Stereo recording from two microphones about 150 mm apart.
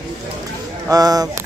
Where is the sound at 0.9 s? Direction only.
25° right (ahead or behind).